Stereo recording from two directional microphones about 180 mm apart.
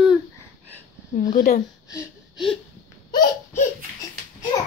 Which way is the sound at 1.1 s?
45° left (ahead or behind).